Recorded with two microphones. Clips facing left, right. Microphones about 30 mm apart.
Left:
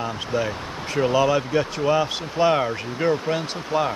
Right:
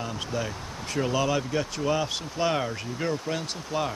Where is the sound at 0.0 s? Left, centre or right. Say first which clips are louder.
Left 6 dB; left.